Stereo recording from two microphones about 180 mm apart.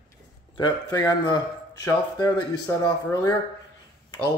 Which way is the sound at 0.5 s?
20° left (ahead or behind).